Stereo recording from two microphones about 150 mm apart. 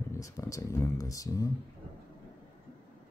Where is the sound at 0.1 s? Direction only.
20° left (ahead or behind).